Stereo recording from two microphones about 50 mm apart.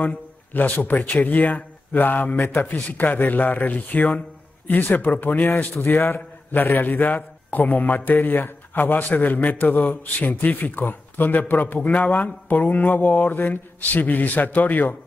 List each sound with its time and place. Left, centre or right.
0.0 s a man's voice: left
5.8 s a man's voice: left